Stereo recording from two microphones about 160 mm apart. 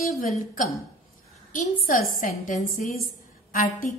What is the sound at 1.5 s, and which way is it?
A woman's voice, 55° left (ahead or behind).